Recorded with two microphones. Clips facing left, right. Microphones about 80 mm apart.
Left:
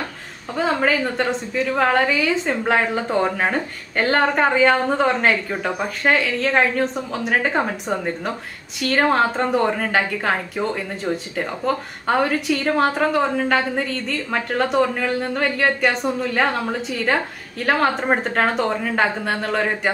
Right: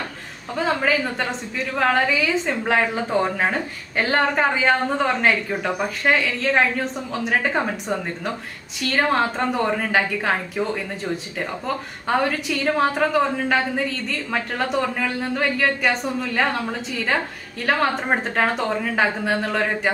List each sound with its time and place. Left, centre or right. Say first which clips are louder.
0.6 s a woman's voice: left 2 dB; centre